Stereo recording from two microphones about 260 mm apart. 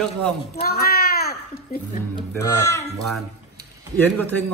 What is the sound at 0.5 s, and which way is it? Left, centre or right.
Cat, left.